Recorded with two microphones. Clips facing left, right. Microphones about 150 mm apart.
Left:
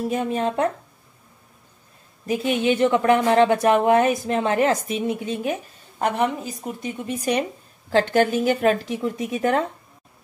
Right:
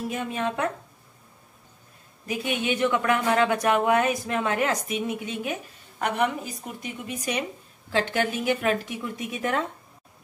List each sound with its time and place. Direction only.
0.1 s a woman's voice: 35° left (ahead or behind)
2.2 s a woman's voice: 30° left (ahead or behind)
7.9 s a woman's voice: 40° left (ahead or behind)